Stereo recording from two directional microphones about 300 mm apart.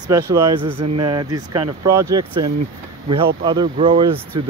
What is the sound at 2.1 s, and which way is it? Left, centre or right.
Speech, centre.